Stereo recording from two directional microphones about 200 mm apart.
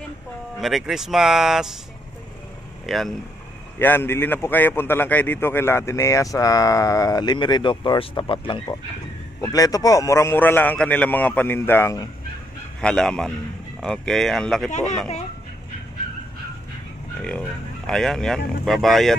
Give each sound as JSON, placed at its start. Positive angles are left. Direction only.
{"t": 0.6, "sound": "speech", "side_deg": 0}
{"t": 2.9, "sound": "a man's voice", "side_deg": 0}
{"t": 12.8, "sound": "speech", "side_deg": 5}
{"t": 14.7, "sound": "speech", "side_deg": 35}
{"t": 17.2, "sound": "speech", "side_deg": 5}